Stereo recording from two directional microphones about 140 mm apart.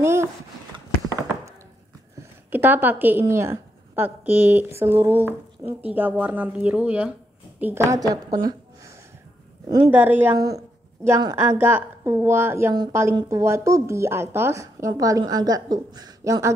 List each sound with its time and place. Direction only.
0.0 s speech: 20° right (ahead or behind)
2.1 s speech: 15° right (ahead or behind)
9.8 s speech: 15° right (ahead or behind)
10.3 s a woman's voice: 25° right (ahead or behind)